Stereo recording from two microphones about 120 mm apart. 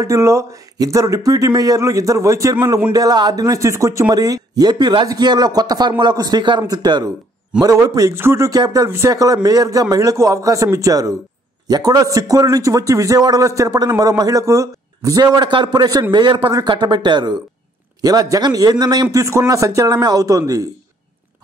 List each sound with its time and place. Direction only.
0.0 s a man's voice: 25° right (ahead or behind)